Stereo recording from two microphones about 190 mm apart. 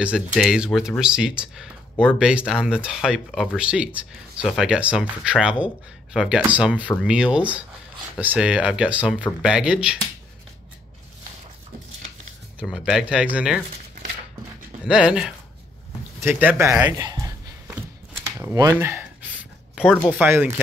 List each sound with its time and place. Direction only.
0.0 s speech: 5° right (ahead or behind)
12.5 s speech: 5° right (ahead or behind)
14.9 s speech: 5° right (ahead or behind); by 17.3 s 20° right (ahead or behind)
18.4 s a sound: 15° right (ahead or behind)
20.1 s speech: 10° right (ahead or behind)